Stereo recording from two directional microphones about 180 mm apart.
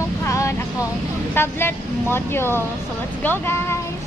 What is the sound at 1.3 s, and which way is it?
Speech, 10° left (ahead or behind).